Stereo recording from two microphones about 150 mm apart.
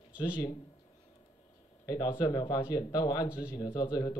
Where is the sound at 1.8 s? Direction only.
25° left (ahead or behind).